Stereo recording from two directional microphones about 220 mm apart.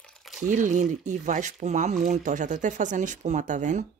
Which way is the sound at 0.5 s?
35° right (ahead or behind).